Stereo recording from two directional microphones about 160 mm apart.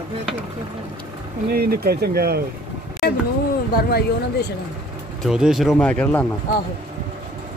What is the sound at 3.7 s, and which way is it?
Speech, 80° left.